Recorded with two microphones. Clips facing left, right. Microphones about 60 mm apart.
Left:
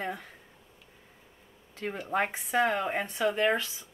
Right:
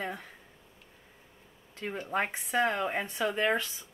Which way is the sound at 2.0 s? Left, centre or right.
Centre.